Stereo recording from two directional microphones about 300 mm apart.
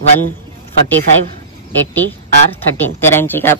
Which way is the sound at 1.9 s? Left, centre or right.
Centre.